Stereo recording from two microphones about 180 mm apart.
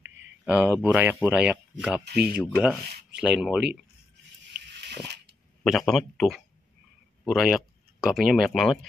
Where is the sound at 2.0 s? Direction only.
60° right (ahead or behind).